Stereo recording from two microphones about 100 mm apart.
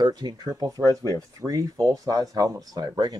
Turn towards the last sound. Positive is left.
turn(degrees=-40)  # may be behind; listen again after turning